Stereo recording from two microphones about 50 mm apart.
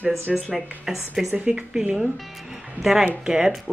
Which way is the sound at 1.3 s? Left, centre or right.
Right.